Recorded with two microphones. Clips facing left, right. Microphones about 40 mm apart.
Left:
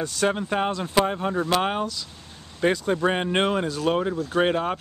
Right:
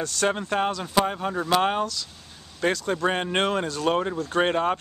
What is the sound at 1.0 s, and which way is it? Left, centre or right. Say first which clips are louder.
Speech: left 2 dB; centre.